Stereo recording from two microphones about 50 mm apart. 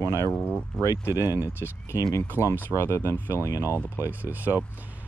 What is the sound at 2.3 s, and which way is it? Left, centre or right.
Speech, right.